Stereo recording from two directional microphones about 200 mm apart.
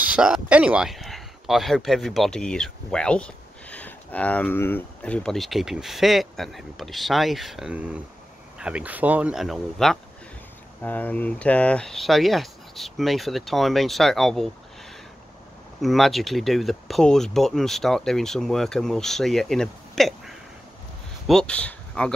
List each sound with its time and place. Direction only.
0.0 s speech: 5° right (ahead or behind)
15.8 s speech: centre (ahead or behind)